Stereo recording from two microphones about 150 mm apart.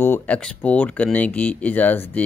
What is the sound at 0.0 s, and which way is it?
Speech, 10° left (ahead or behind).